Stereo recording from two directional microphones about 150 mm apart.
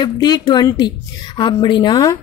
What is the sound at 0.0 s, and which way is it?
A woman's voice, 25° left (ahead or behind).